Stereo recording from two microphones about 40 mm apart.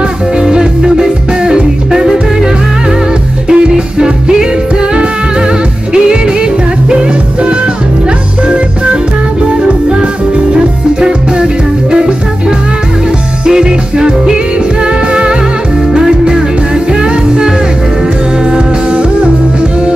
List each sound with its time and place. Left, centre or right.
0.4 s music: centre
3.4 s music: right
6.9 s music: right
10.5 s music: centre
15.9 s music: centre
18.5 s music: right